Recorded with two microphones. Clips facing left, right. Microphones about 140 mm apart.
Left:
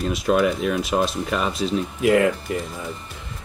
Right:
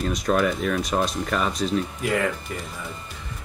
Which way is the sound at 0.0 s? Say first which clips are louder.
Left 3 dB; 5° left (ahead or behind).